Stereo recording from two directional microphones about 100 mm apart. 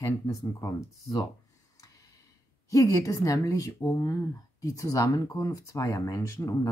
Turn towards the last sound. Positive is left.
turn(degrees=30)  # may be behind; listen again after turning